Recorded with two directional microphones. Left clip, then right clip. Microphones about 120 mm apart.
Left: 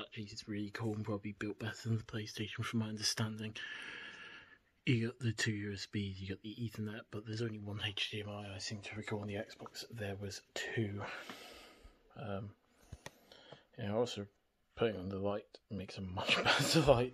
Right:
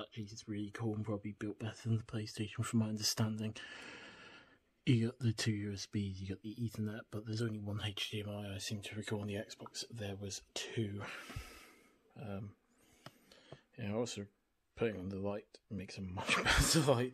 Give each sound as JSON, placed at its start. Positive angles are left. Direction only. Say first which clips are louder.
{"t": 0.0, "sound": "a sound", "louder": "left 1 dB", "side_deg": -25}
{"t": 0.5, "sound": "speech", "louder": "even", "side_deg": -10}
{"t": 2.0, "sound": "speech", "louder": "left 1 dB", "side_deg": -35}
{"t": 7.6, "sound": "speech", "louder": "left 2 dB", "side_deg": -55}
{"t": 13.3, "sound": "a sound", "louder": "left 2 dB", "side_deg": -20}
{"t": 14.8, "sound": "speech", "louder": "left 2 dB", "side_deg": -20}